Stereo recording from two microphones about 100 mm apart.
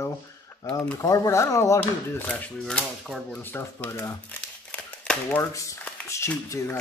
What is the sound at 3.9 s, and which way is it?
Speech, 25° left (ahead or behind).